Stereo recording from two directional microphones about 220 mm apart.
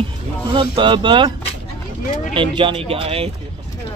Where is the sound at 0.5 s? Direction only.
20° right (ahead or behind).